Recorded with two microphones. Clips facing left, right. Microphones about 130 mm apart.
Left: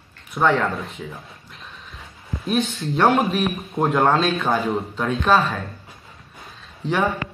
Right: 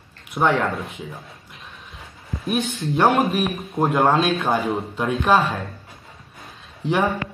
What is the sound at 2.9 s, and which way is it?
Speech, centre (ahead or behind).